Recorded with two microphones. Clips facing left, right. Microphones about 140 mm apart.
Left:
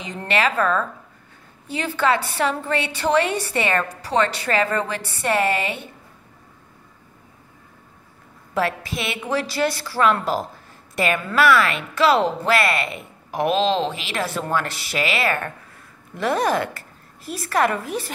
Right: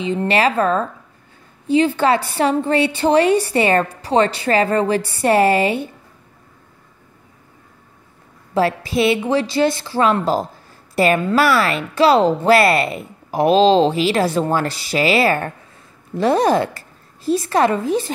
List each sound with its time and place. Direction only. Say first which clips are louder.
0.0 s a woman's voice: right 5 dB; 30° right (ahead or behind)
8.5 s a woman's voice: right 7 dB; 30° right (ahead or behind)